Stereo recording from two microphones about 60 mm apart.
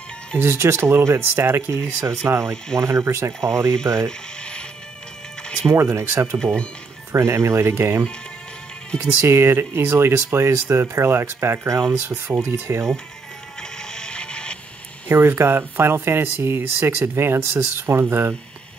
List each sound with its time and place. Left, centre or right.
0.4 s speech: right
4.4 s music: centre
5.6 s speech: right
6.3 s speech: centre
7.1 s speech: right
9.2 s speech: right
13.6 s music: centre
15.0 s speech: right